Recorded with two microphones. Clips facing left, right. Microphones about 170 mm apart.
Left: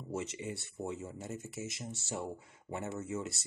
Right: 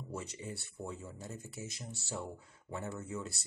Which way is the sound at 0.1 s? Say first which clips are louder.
Left 5 dB; 20° left (ahead or behind).